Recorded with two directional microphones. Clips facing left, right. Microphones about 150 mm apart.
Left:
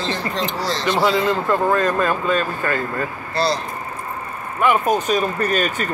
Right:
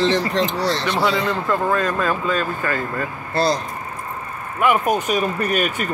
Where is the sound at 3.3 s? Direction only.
50° right (ahead or behind).